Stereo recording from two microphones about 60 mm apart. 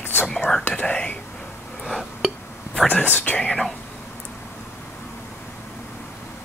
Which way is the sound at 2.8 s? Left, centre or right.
Left.